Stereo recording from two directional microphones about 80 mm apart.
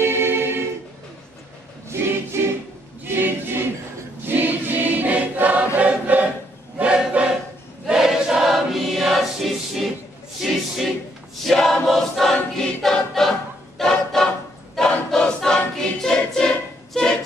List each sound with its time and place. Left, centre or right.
0.0 s a capella: right
1.9 s choir: right; by 9.8 s centre
11.4 s choir: centre
13.7 s a sound: centre
14.8 s choir: centre